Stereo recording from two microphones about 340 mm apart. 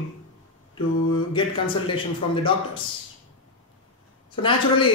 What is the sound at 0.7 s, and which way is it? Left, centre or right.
Speech, centre.